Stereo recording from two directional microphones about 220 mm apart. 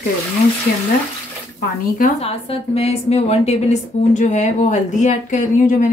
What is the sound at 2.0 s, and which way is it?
A woman's voice, 25° left (ahead or behind).